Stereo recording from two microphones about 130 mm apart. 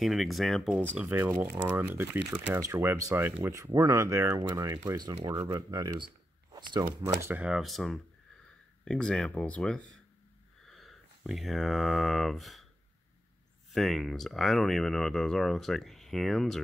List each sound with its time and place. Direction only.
0.0 s speech: centre (ahead or behind)
1.1 s speech: 15° right (ahead or behind)
7.4 s speech: centre (ahead or behind)
13.7 s speech: centre (ahead or behind)